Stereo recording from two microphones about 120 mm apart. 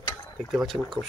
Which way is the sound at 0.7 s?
30° right (ahead or behind).